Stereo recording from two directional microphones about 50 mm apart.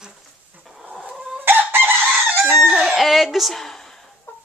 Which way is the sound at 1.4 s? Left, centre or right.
Right.